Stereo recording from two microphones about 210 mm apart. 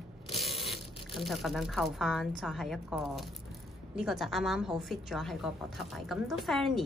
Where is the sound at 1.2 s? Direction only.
Centre (ahead or behind).